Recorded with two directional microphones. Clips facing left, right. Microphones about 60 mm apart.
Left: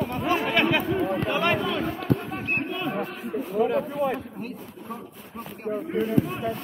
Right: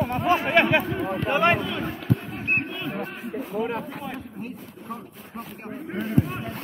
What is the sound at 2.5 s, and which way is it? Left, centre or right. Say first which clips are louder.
Music: right 3 dB; right.